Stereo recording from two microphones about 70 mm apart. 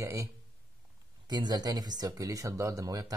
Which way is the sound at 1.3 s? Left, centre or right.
Right.